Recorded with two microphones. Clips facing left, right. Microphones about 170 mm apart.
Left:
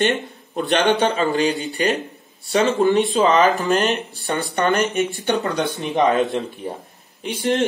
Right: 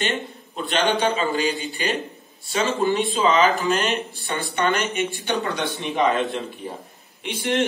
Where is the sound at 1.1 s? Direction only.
55° left (ahead or behind).